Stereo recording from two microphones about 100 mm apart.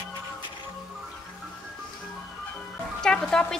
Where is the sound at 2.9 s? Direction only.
5° left (ahead or behind).